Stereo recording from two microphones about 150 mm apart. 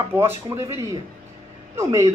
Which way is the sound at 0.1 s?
15° right (ahead or behind).